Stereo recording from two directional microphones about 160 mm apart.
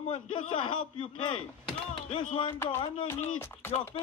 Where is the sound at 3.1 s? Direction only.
15° left (ahead or behind).